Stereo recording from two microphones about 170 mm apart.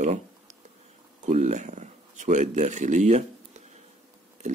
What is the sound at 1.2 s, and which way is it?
Speech, 45° right (ahead or behind).